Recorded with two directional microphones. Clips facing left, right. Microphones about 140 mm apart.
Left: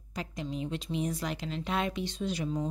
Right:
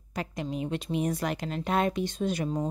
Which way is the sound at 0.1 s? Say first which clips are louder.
Right 3 dB; 60° right (ahead or behind).